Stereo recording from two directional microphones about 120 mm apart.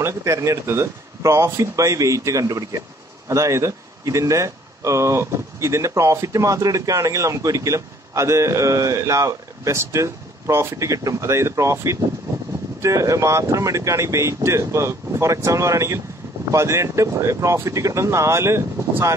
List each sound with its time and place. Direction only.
0.0 s speech: 25° right (ahead or behind)